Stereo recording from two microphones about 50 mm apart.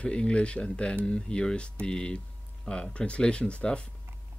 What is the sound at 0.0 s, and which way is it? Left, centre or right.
Speech, left.